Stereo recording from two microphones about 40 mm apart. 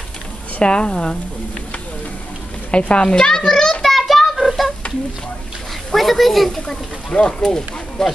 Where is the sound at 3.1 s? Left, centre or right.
Centre.